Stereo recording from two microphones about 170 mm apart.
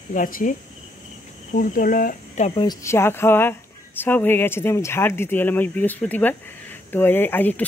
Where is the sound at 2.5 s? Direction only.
25° left (ahead or behind).